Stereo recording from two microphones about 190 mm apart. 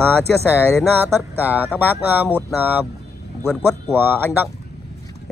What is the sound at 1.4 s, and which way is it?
Speech, 10° right (ahead or behind).